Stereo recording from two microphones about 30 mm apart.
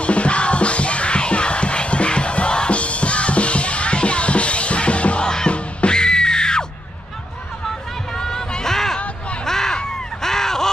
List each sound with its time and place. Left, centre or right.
0.0 s music: left
2.8 s music: left
5.2 s music: left
8.2 s music: centre
9.4 s a sound: centre